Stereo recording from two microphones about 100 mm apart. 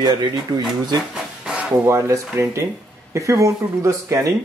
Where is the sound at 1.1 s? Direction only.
10° right (ahead or behind).